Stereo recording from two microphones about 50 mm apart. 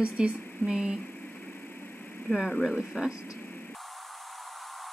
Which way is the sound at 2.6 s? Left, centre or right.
Centre.